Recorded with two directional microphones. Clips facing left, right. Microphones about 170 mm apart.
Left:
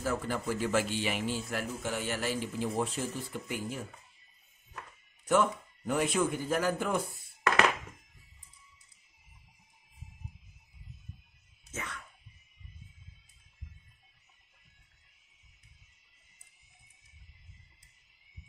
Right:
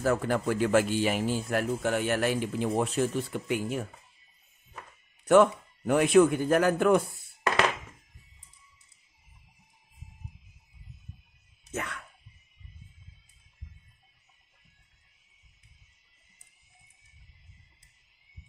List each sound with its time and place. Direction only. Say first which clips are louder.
0.0 s speech: right 6 dB; 70° right (ahead or behind)
5.2 s speech: right 7 dB; 70° right (ahead or behind)
11.7 s a sound: right 6 dB; 60° right (ahead or behind)